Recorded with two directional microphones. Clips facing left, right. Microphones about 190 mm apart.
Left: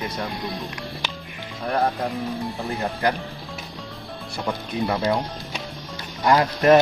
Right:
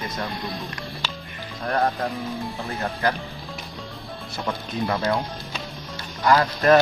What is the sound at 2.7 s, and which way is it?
Speech, 15° left (ahead or behind).